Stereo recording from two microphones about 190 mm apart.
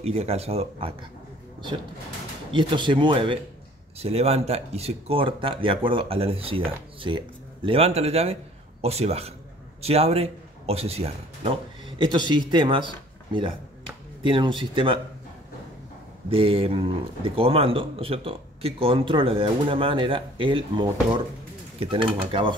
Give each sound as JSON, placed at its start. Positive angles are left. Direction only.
{"t": 0.0, "sound": "speech", "side_deg": -30}
{"t": 2.5, "sound": "speech", "side_deg": -25}
{"t": 16.3, "sound": "speech", "side_deg": -30}